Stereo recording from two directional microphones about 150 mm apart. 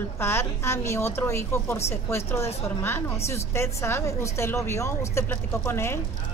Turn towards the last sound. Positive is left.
turn(degrees=15)  # may be behind; listen again after turning